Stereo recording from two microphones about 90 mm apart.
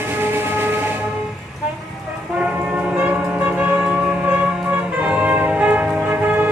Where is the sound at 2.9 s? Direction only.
15° right (ahead or behind).